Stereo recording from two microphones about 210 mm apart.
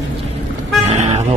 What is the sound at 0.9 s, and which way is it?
Toot, 30° right (ahead or behind).